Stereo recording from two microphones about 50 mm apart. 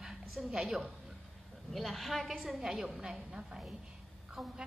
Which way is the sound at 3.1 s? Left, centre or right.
Centre.